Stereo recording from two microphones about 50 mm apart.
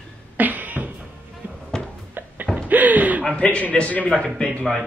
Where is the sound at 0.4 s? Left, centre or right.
Right.